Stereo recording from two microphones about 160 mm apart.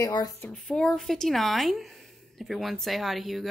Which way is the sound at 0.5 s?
5° left (ahead or behind).